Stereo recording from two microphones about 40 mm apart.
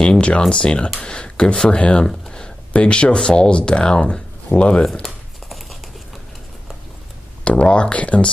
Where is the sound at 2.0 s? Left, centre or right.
Centre.